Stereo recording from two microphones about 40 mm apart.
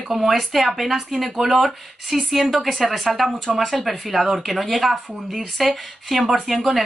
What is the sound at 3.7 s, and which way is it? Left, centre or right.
A woman's voice, centre.